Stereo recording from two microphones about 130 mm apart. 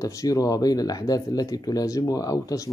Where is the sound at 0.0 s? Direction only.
25° left (ahead or behind).